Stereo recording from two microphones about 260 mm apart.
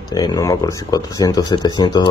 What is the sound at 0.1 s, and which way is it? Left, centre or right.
Speech, centre.